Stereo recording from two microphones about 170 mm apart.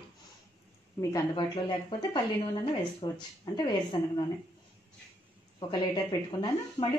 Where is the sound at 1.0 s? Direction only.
20° left (ahead or behind).